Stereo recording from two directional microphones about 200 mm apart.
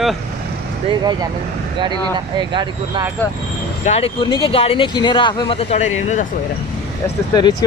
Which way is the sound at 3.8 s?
30° left (ahead or behind).